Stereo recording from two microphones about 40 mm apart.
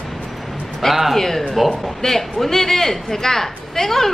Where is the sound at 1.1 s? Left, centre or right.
Centre.